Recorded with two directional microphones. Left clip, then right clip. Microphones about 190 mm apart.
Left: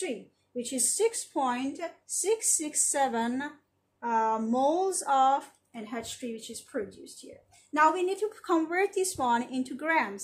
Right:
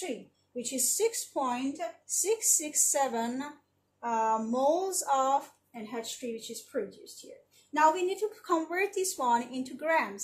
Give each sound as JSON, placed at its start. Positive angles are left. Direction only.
{"t": 0.6, "sound": "speech", "side_deg": 40}